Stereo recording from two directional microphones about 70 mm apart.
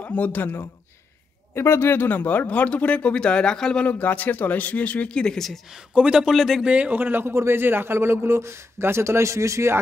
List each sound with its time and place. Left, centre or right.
0.0 s speech: left
1.5 s speech: left; by 3.8 s centre
3.8 s speech: left; by 5.6 s centre
5.9 s a man's voice: centre
6.7 s a man's voice: right